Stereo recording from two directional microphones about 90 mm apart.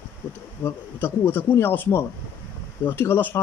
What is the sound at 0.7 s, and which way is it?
Speech, 20° left (ahead or behind).